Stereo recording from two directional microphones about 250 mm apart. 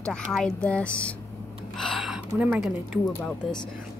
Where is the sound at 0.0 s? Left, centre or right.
Centre.